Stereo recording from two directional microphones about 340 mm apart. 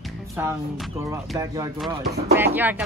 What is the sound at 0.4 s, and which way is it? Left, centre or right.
A woman's voice, centre.